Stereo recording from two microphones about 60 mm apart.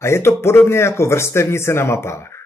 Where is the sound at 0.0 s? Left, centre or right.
Left.